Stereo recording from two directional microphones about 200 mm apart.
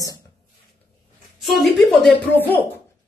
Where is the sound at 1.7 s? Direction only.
Centre (ahead or behind).